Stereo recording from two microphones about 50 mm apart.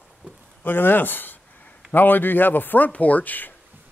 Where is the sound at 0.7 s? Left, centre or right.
Left.